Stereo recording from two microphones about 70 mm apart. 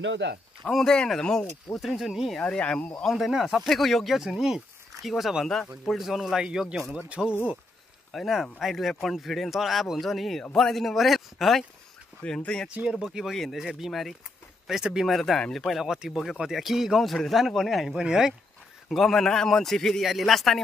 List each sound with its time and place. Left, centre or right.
0.7 s speech: centre
1.8 s speech: centre
2.4 s speech: centre
3.2 s speech: centre
8.1 s speech: centre
12.2 s speech: centre
13.0 s speech: centre
13.3 s speech: centre
15.8 s speech: centre
18.9 s speech: centre